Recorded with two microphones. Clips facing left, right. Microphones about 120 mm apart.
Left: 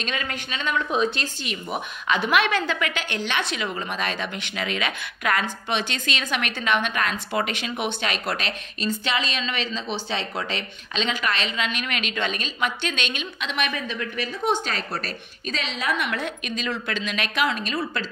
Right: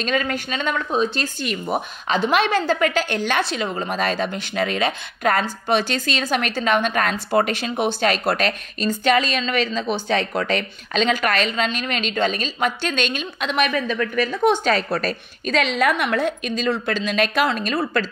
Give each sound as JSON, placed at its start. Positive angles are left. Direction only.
{"t": 0.0, "sound": "speech", "side_deg": -40}
{"t": 15.5, "sound": "speech", "side_deg": -65}